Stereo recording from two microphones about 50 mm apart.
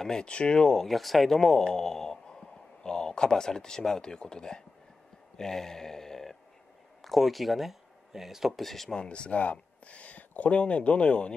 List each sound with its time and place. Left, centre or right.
0.0 s speech: centre
0.8 s speech: centre
5.4 s a sound: centre
7.0 s speech: centre
8.9 s speech: centre